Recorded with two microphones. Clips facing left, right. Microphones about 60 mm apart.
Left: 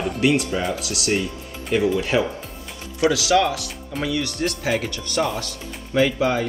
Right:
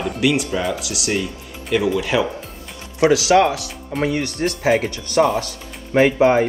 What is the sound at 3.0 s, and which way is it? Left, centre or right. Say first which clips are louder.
Speech: right 4 dB; right.